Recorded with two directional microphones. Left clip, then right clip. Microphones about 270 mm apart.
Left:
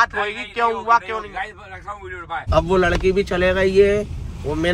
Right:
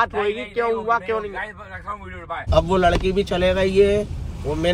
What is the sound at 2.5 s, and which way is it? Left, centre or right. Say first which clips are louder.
Speech: even; left.